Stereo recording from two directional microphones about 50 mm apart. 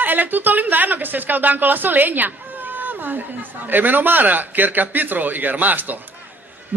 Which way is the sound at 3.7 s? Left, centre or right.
Right.